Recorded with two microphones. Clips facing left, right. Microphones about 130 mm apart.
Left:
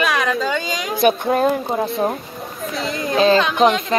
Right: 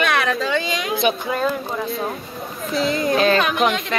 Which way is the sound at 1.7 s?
30° left (ahead or behind).